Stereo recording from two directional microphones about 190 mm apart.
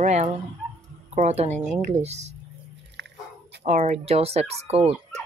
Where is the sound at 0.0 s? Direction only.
40° right (ahead or behind).